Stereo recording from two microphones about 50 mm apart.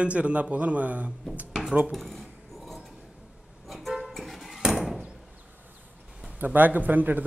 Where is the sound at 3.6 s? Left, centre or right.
Centre.